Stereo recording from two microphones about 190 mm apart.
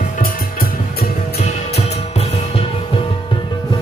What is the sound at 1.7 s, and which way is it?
Music, 35° left (ahead or behind).